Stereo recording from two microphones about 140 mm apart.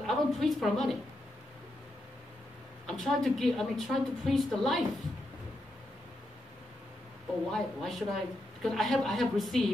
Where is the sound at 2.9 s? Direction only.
5° left (ahead or behind).